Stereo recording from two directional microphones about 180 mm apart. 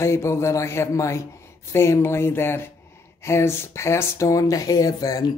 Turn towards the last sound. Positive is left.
turn(degrees=20)  # may be behind; listen again after turning